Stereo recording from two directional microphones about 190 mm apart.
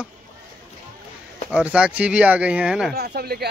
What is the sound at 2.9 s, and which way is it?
Speech, 55° right (ahead or behind).